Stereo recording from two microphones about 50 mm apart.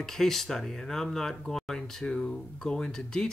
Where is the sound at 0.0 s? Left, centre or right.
Centre.